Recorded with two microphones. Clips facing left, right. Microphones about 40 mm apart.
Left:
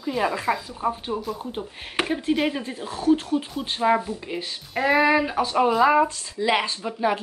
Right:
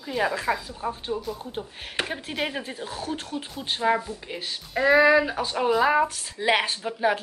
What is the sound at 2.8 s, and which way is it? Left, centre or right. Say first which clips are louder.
Speech: left 10 dB; centre.